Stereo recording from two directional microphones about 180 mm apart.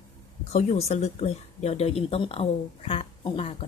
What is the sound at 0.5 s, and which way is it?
Speech, 35° left (ahead or behind).